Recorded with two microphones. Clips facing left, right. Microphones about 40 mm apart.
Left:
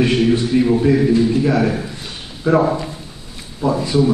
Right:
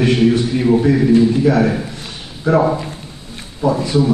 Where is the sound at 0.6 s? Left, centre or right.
Centre.